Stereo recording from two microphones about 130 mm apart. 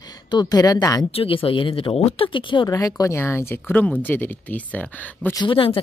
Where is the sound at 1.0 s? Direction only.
45° left (ahead or behind).